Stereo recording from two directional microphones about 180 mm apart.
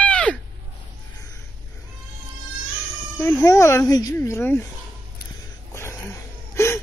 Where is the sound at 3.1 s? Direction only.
15° left (ahead or behind).